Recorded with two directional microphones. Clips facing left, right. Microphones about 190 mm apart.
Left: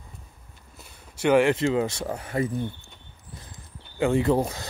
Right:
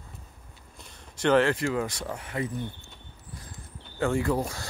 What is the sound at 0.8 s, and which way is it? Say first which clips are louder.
Speech: left 2 dB; 10° left (ahead or behind).